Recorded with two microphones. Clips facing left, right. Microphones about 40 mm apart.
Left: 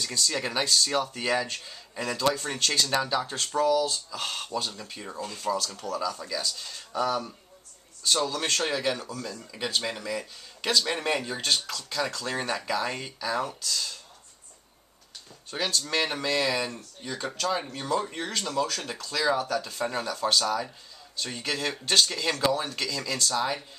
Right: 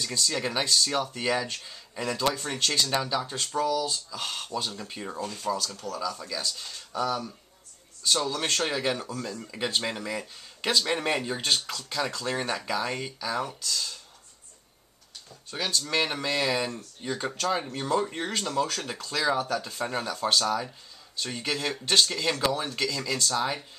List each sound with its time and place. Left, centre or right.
0.2 s speech: centre
5.3 s speech: centre
6.9 s speech: centre
8.0 s speech: centre
15.5 s speech: centre